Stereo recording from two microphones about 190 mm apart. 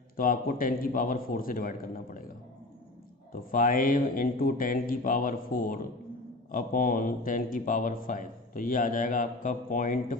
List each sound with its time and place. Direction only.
0.1 s a man's voice: 45° left (ahead or behind)
3.5 s a man's voice: 45° left (ahead or behind)